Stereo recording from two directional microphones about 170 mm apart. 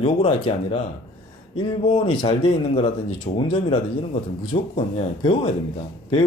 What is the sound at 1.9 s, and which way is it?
Speech, 30° left (ahead or behind).